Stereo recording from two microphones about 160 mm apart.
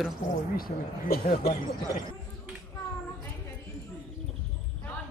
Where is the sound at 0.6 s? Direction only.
65° left (ahead or behind).